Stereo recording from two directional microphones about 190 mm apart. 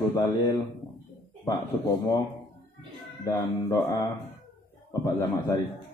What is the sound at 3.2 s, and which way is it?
Speech, 15° left (ahead or behind).